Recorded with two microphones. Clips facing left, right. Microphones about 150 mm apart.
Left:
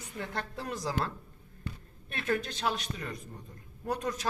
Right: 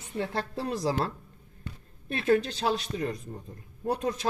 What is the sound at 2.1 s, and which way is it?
Speech, 30° right (ahead or behind).